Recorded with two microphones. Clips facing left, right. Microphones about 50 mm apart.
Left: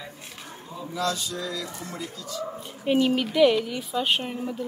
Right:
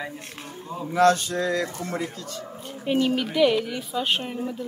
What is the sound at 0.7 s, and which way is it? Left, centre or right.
Speech, right.